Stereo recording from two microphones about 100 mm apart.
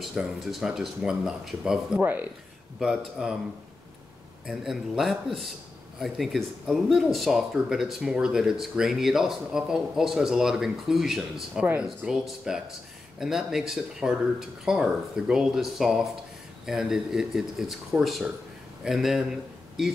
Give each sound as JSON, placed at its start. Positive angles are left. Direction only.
{"t": 0.0, "sound": "speech", "side_deg": -5}
{"t": 2.0, "sound": "speech", "side_deg": -20}
{"t": 2.8, "sound": "speech", "side_deg": -5}
{"t": 4.5, "sound": "speech", "side_deg": 0}
{"t": 11.6, "sound": "speech", "side_deg": -15}